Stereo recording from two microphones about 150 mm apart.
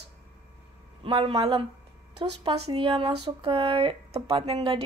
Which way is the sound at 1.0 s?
40° right (ahead or behind).